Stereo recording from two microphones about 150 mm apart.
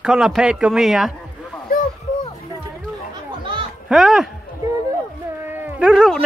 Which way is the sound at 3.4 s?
35° right (ahead or behind).